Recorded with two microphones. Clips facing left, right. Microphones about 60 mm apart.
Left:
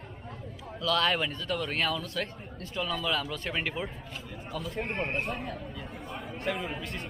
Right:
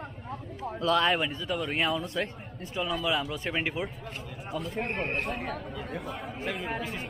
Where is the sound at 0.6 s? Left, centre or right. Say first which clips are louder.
Right 4 dB; right.